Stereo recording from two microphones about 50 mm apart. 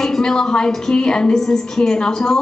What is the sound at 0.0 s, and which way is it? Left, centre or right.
A woman's voice, centre.